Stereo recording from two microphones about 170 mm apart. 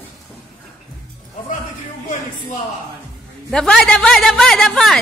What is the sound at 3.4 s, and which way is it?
A woman's voice, 5° left (ahead or behind).